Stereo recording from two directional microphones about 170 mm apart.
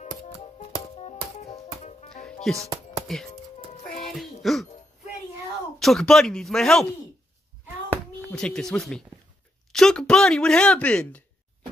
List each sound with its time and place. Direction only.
0.9 s music: 40° left (ahead or behind)
2.4 s speech: centre (ahead or behind)
4.2 s music: centre (ahead or behind)
5.8 s speech: centre (ahead or behind)
8.3 s speech: 5° left (ahead or behind)